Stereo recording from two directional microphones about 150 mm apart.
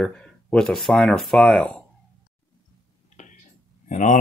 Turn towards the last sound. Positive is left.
turn(degrees=55)  # may be behind; listen again after turning